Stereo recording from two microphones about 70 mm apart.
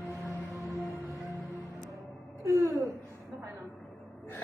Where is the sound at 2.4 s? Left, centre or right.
Right.